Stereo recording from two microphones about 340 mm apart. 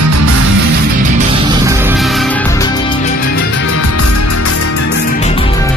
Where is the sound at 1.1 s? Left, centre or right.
Centre.